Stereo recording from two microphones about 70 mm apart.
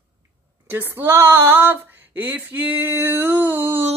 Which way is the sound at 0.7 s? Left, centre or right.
Right.